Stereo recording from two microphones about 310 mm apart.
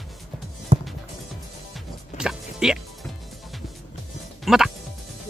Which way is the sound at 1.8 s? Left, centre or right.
Centre.